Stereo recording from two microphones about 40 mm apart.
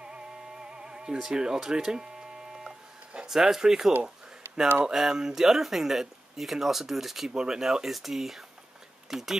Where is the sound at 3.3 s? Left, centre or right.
Centre.